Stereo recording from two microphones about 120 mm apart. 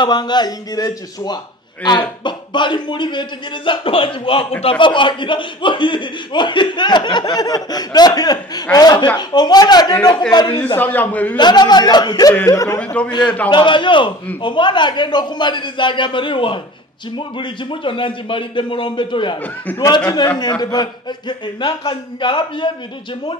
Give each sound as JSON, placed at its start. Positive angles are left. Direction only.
{"t": 0.0, "sound": "speech", "side_deg": 35}
{"t": 10.8, "sound": "a man's voice", "side_deg": 15}
{"t": 11.3, "sound": "speech", "side_deg": 35}
{"t": 12.7, "sound": "a man's voice", "side_deg": 10}
{"t": 13.5, "sound": "a man's voice", "side_deg": 40}
{"t": 19.4, "sound": "a man's voice", "side_deg": 15}
{"t": 20.3, "sound": "speech", "side_deg": 35}